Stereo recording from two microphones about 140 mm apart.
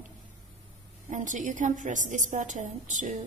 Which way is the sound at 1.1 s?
65° right (ahead or behind).